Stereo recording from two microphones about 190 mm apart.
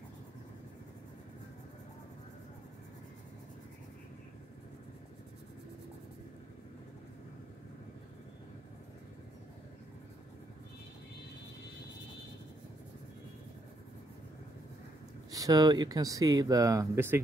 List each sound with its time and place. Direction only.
15.3 s speech: 20° right (ahead or behind)